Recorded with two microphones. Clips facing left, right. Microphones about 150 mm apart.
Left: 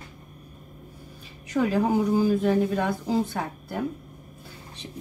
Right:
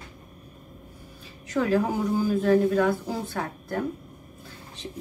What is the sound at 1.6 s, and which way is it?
Speech, 15° left (ahead or behind).